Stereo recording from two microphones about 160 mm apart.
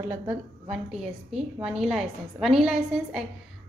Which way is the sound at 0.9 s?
45° right (ahead or behind).